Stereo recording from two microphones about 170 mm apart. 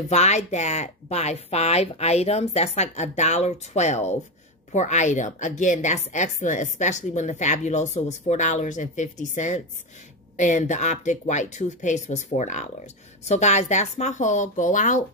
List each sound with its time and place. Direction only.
0.1 s a woman's voice: 40° left (ahead or behind)